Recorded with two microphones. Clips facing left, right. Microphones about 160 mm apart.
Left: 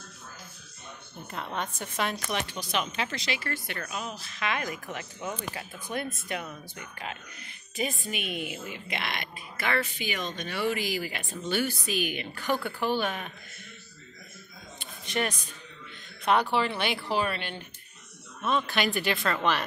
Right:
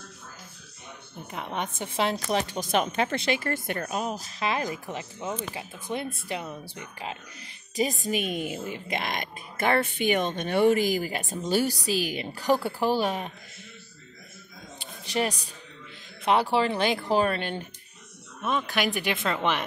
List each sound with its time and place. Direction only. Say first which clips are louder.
1.2 s a woman's voice: right 2 dB; 15° right (ahead or behind); by 13.3 s 35° right (ahead or behind)
16.4 s a woman's voice: right 4 dB; 35° right (ahead or behind)
18.4 s speech: even; 10° right (ahead or behind)